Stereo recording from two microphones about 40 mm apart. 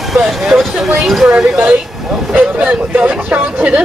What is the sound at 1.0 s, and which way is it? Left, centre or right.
Speech, centre.